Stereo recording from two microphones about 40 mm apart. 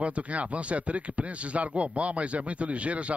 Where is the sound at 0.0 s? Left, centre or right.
Right.